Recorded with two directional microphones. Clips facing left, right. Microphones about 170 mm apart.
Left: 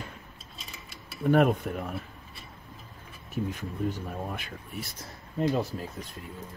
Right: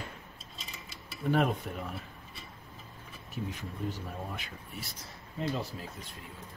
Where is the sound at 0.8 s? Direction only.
55° left (ahead or behind).